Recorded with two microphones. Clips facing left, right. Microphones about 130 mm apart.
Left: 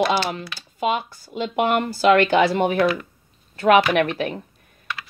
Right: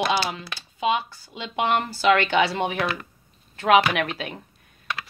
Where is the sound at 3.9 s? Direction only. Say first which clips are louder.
Left 7 dB; 45° left (ahead or behind).